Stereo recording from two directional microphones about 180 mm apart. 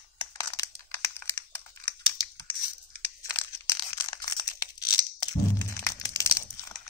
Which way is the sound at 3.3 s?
15° left (ahead or behind).